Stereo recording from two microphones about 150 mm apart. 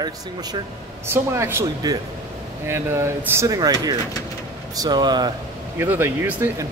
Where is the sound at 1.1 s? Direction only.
15° right (ahead or behind).